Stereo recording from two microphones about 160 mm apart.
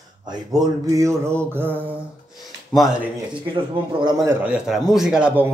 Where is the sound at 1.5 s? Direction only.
10° right (ahead or behind).